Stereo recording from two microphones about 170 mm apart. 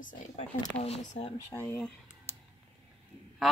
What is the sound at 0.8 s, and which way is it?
Speech, 40° left (ahead or behind).